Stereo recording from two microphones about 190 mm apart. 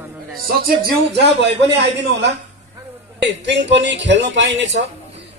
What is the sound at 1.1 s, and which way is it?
A man's voice, 65° right (ahead or behind).